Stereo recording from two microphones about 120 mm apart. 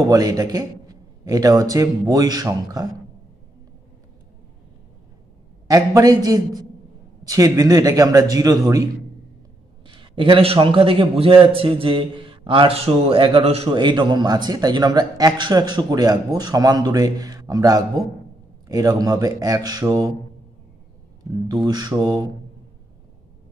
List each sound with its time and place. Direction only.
0.1 s a man's voice: 30° right (ahead or behind)
5.7 s a man's voice: 30° right (ahead or behind)
9.8 s a man's voice: 45° right (ahead or behind)
13.7 s a man's voice: 40° right (ahead or behind)
21.6 s a man's voice: 35° right (ahead or behind)